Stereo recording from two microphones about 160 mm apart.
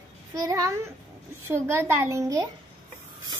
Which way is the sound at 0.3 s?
20° right (ahead or behind).